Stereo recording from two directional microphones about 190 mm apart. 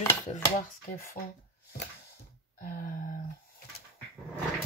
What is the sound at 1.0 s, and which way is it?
Speech, 45° left (ahead or behind).